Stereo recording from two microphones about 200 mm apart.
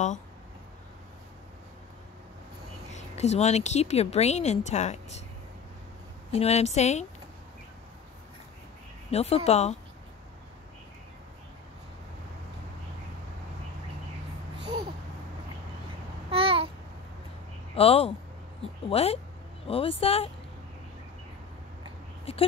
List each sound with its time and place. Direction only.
2.9 s speech: 35° left (ahead or behind)
6.3 s speech: 35° left (ahead or behind)
9.1 s speech: 30° left (ahead or behind)
14.6 s babbling: 20° right (ahead or behind)
16.3 s babbling: 30° right (ahead or behind)
17.7 s a woman's voice: 30° left (ahead or behind)
22.3 s a sound: 30° left (ahead or behind)